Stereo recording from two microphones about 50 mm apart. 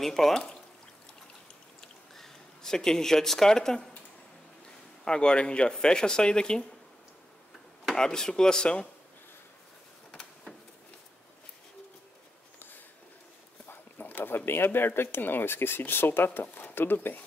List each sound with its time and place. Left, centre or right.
0.0 s speech: centre
1.8 s a sound: centre
5.0 s speech: centre
7.9 s speech: centre
13.7 s speech: left